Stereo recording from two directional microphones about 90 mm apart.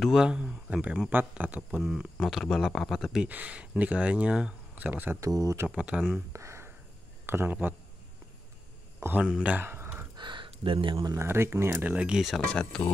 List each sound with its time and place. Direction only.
0.0 s speech: 5° right (ahead or behind)
1.8 s speech: centre (ahead or behind)
3.3 s speech: 15° right (ahead or behind)
5.2 s speech: 35° right (ahead or behind)
5.7 s speech: 15° right (ahead or behind)
6.3 s a sound: 30° right (ahead or behind)
7.2 s speech: 25° right (ahead or behind)
9.0 s speech: 20° right (ahead or behind)
9.4 s a sound: 20° right (ahead or behind)
10.1 s a sound: 60° right (ahead or behind)
11.1 s speech: 30° right (ahead or behind)
11.7 s speech: 15° right (ahead or behind)